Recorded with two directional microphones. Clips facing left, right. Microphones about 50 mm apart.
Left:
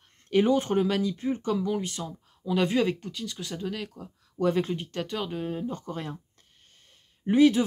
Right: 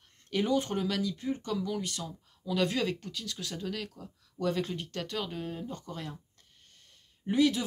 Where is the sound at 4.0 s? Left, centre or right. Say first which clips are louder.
Left 7 dB; left.